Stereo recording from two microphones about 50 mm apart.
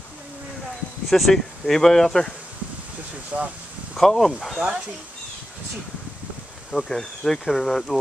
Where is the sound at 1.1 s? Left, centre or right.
Centre.